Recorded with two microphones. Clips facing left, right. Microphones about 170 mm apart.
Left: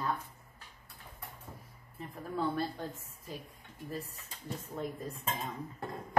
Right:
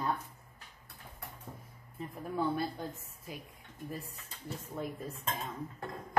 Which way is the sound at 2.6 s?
10° right (ahead or behind).